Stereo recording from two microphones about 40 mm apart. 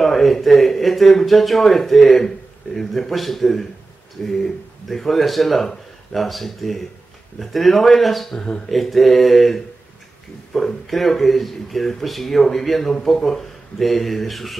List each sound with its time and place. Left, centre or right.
0.0 s speech: centre
8.4 s speech: left
8.6 s speech: centre